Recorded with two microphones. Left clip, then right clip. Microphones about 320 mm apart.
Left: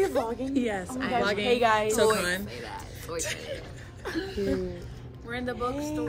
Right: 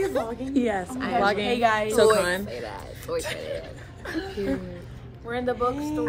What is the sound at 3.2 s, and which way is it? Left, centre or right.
Speech, centre.